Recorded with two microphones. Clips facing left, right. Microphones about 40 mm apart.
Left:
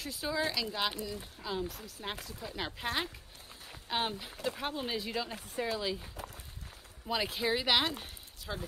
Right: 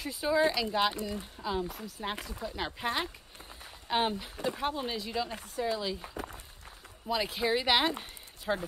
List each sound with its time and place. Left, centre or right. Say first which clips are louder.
0.0 s speech: right 7 dB; centre
7.1 s speech: right 2 dB; centre
8.5 s speech: right 9 dB; right